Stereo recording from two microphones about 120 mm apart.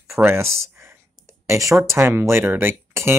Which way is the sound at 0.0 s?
20° right (ahead or behind).